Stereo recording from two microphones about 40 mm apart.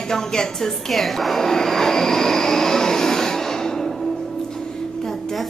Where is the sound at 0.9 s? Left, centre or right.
Centre.